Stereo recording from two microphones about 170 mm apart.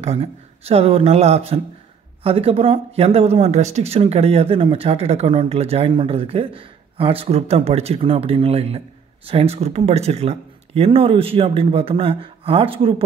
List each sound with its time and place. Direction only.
0.0 s speech: 35° right (ahead or behind)